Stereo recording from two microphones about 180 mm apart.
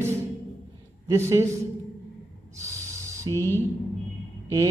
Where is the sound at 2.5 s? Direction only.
15° right (ahead or behind).